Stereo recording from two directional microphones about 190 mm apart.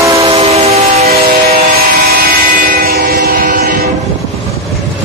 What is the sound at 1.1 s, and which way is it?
Train, 55° right (ahead or behind).